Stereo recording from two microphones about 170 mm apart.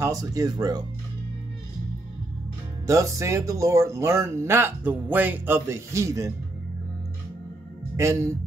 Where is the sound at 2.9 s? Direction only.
20° right (ahead or behind).